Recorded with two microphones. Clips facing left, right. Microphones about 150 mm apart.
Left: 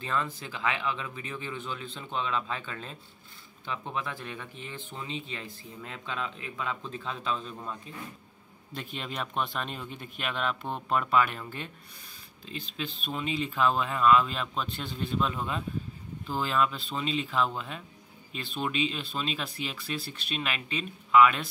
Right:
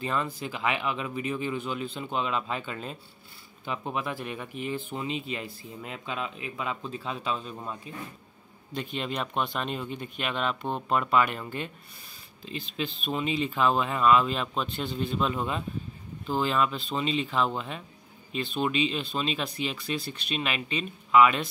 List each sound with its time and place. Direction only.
0.0 s speech: 10° right (ahead or behind)
8.7 s speech: centre (ahead or behind)